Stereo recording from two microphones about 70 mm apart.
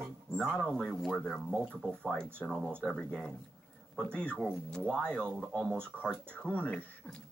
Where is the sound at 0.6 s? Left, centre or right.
Centre.